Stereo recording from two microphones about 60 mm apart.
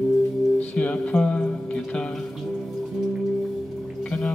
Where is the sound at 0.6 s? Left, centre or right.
Left.